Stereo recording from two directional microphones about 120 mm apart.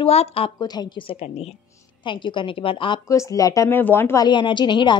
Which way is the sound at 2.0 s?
45° left (ahead or behind).